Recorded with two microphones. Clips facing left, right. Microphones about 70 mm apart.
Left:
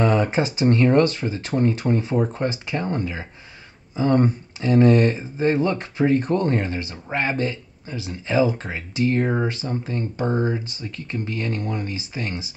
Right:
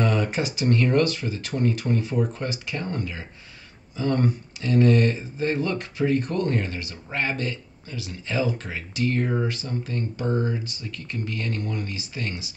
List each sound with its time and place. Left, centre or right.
0.0 s speech: left